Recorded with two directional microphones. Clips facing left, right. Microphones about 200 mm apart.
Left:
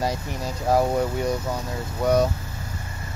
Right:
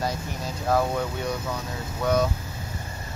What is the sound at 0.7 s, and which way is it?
Speech, 20° left (ahead or behind).